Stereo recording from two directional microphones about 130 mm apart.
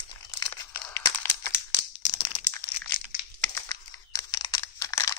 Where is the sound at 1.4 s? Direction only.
30° left (ahead or behind).